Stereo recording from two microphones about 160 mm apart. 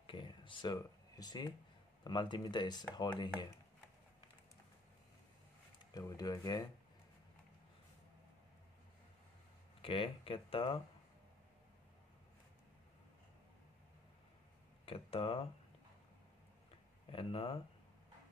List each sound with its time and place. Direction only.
0.0 s a sound: 30° left (ahead or behind)
2.0 s speech: 30° left (ahead or behind)
5.9 s speech: 25° left (ahead or behind)
9.8 s speech: 35° left (ahead or behind)
14.9 s speech: 35° left (ahead or behind)
17.1 s speech: 35° left (ahead or behind)